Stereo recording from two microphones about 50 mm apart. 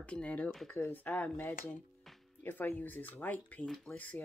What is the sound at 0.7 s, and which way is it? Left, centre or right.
Speech, left.